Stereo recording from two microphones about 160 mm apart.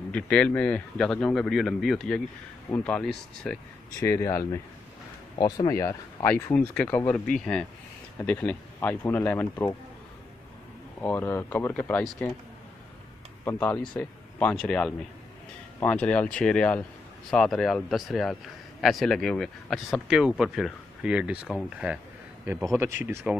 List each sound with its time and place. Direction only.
0.1 s a man's voice: 5° left (ahead or behind)
4.0 s speech: 20° left (ahead or behind)
11.0 s speech: 10° left (ahead or behind)
13.4 s a man's voice: 15° left (ahead or behind); by 23.3 s 15° right (ahead or behind)